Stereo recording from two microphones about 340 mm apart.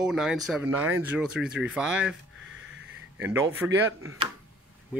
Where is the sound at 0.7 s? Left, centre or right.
Right.